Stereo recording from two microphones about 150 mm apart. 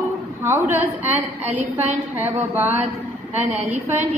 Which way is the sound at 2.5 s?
10° right (ahead or behind).